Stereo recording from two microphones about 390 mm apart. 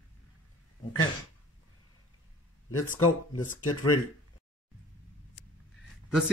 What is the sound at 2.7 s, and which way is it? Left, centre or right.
Speech, left.